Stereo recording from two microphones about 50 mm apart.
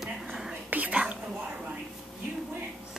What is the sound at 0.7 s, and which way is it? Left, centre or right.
Whispering, right.